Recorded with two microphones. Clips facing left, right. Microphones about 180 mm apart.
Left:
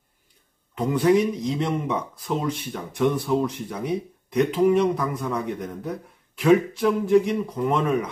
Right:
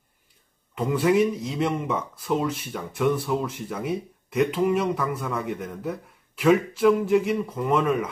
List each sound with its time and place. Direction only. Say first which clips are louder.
0.7 s speech: left 1 dB; 5° right (ahead or behind)